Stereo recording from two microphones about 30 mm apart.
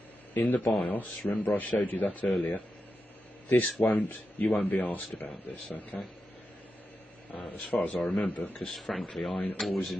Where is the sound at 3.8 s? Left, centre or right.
Left.